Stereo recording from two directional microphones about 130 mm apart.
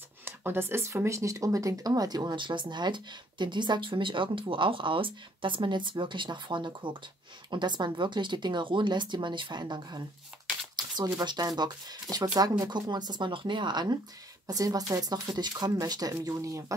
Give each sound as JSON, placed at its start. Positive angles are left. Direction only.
{"t": 0.2, "sound": "speech", "side_deg": -15}